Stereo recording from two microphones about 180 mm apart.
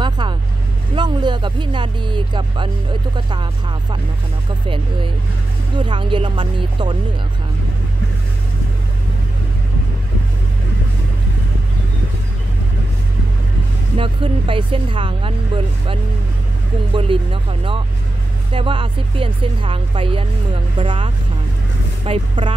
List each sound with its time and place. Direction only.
0.0 s vehicle: 25° right (ahead or behind)
0.9 s speech: 25° right (ahead or behind)
5.8 s speech: 25° right (ahead or behind)
13.9 s speech: 30° right (ahead or behind)